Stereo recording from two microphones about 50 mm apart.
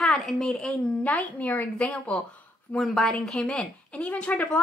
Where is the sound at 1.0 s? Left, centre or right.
Left.